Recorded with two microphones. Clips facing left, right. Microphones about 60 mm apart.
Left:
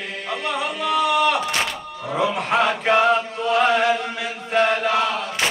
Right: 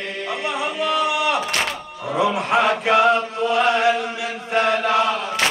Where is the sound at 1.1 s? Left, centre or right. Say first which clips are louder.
Left 2 dB; centre.